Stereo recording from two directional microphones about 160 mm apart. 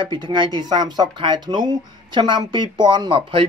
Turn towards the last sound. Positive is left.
turn(degrees=-30)  # may be behind; listen again after turning